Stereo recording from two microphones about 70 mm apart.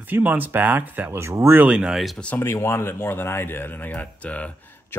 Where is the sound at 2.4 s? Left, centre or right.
Left.